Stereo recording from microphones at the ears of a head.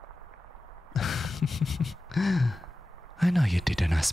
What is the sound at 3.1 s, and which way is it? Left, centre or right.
Speech, centre.